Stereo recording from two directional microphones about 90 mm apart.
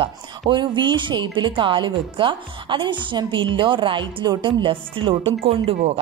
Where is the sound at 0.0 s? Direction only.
65° right (ahead or behind).